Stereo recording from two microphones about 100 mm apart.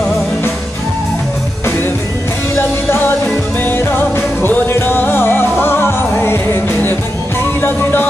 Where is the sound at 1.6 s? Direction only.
25° left (ahead or behind).